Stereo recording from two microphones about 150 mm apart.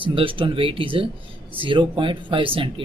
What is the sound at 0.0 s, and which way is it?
Speech, 35° right (ahead or behind).